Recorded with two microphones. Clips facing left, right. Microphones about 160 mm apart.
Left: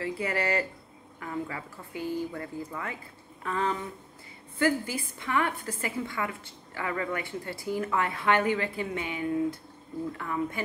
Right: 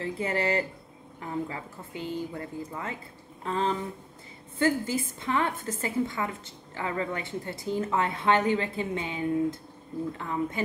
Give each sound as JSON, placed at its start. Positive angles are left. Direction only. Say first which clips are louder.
{"t": 0.0, "sound": "a woman's voice", "louder": "right 1 dB", "side_deg": -25}